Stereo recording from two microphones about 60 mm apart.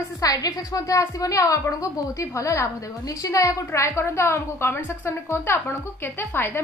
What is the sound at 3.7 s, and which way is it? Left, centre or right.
A woman's voice, left.